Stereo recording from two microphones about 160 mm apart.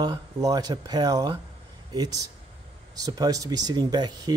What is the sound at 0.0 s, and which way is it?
Speech, 25° right (ahead or behind).